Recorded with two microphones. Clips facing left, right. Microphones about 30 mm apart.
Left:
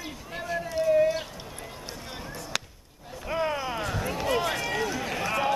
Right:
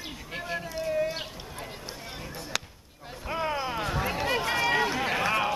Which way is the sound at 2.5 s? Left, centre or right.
Centre.